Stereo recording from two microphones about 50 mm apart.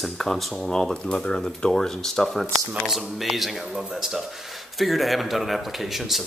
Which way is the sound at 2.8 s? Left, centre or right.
Centre.